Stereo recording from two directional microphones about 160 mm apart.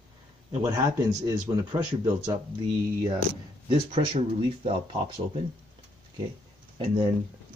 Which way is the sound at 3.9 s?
30° right (ahead or behind).